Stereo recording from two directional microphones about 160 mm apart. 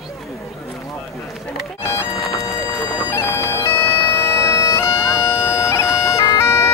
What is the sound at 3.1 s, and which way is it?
Bagpipes, 15° left (ahead or behind).